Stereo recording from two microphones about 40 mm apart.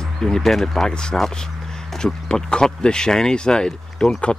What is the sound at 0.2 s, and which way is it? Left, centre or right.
Speech, centre.